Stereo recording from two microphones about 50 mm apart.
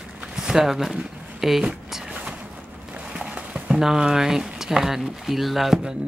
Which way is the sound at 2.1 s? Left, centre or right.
Right.